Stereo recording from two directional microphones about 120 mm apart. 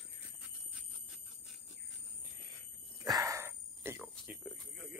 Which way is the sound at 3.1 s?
30° right (ahead or behind).